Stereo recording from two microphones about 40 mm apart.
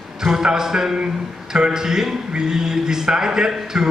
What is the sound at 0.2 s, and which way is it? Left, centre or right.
A man's voice, centre.